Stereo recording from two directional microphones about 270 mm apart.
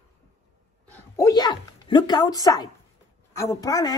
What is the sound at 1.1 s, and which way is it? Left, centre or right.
A woman's voice, centre.